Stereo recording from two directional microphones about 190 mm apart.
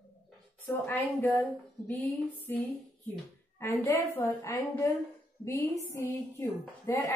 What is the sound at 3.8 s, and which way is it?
A woman's voice, 15° left (ahead or behind).